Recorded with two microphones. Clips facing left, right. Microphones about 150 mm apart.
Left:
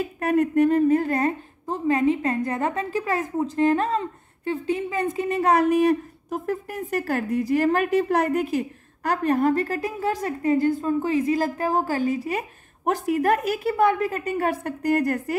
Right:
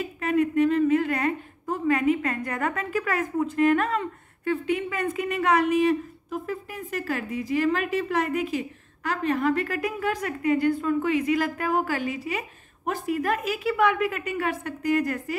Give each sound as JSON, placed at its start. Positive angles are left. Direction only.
{"t": 0.2, "sound": "a woman's voice", "side_deg": 55}
{"t": 6.7, "sound": "a woman's voice", "side_deg": 60}
{"t": 9.1, "sound": "a woman's voice", "side_deg": 45}
{"t": 13.1, "sound": "speech", "side_deg": 55}
{"t": 13.7, "sound": "a woman's voice", "side_deg": 35}
{"t": 14.5, "sound": "speech", "side_deg": 55}